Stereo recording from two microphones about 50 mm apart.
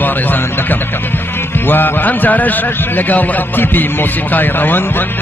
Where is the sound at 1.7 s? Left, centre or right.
Left.